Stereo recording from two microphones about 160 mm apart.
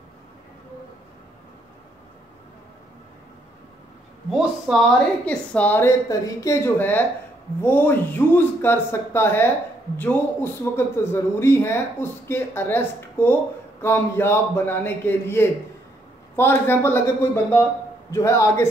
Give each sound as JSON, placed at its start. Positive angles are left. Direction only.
{"t": 4.3, "sound": "a man's voice", "side_deg": 0}